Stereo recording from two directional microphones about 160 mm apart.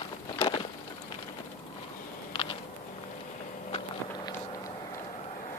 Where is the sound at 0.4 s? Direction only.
35° left (ahead or behind).